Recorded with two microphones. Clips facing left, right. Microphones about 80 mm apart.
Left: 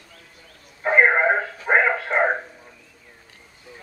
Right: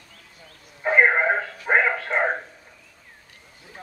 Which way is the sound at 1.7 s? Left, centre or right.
Centre.